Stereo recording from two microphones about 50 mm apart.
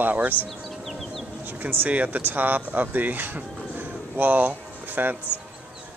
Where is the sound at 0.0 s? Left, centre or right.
Right.